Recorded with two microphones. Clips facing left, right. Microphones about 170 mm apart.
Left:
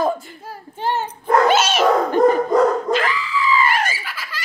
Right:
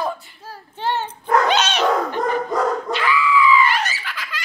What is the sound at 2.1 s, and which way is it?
Dog, 45° left (ahead or behind).